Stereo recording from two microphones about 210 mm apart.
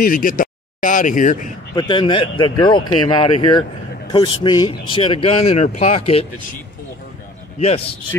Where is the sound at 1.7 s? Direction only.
20° left (ahead or behind).